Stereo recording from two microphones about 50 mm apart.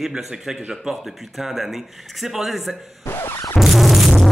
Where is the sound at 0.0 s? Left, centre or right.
Centre.